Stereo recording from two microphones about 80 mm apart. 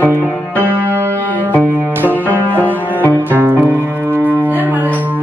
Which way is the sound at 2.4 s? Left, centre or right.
Left.